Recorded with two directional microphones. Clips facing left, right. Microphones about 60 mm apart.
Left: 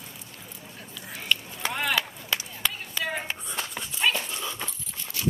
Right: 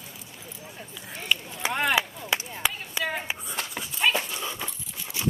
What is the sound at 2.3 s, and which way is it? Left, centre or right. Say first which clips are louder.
Chop: right 2 dB; centre.